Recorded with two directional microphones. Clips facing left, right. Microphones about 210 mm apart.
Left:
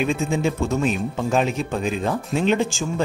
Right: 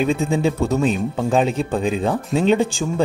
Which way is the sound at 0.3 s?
35° right (ahead or behind).